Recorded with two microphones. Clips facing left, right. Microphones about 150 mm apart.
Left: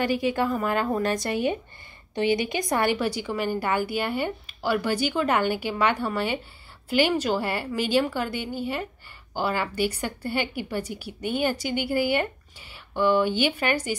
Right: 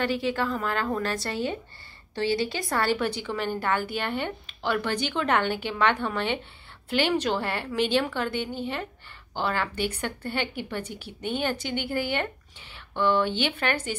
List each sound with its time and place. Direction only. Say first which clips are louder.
0.0 s a woman's voice: left 3 dB; 10° left (ahead or behind)